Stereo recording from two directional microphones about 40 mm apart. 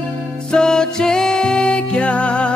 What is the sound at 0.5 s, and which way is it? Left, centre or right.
Music, centre.